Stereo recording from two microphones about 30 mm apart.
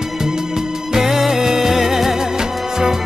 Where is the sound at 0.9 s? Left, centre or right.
Centre.